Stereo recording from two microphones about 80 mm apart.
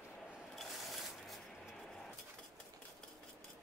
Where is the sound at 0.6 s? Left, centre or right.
Centre.